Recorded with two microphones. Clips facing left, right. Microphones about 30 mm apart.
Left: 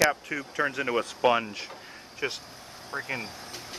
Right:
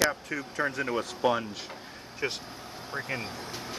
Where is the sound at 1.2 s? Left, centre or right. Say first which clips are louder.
Left 3 dB; left.